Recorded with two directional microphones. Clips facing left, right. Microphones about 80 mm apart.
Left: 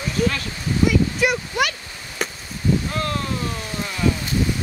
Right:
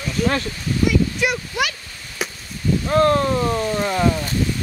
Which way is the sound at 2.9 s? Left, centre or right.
Right.